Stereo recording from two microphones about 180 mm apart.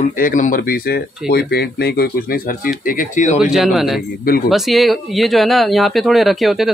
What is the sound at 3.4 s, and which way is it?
Speech, centre (ahead or behind).